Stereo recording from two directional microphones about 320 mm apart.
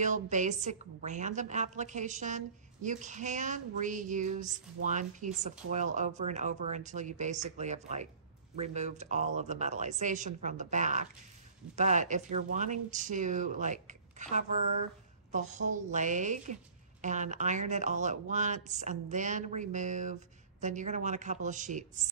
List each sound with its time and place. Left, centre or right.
0.0 s a woman's voice: right